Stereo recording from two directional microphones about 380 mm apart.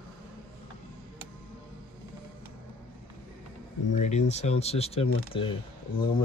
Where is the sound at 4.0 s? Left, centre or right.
Centre.